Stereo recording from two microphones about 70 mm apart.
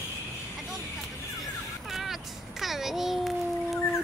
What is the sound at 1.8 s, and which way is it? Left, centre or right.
Meow, centre.